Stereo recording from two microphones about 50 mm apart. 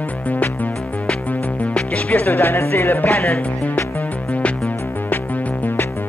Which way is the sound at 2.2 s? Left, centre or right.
Left.